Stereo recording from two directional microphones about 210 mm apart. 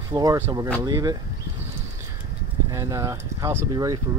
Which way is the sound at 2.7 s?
15° right (ahead or behind).